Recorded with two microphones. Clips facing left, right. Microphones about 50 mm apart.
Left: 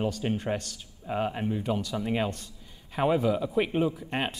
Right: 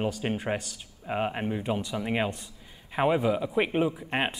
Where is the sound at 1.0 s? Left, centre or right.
Right.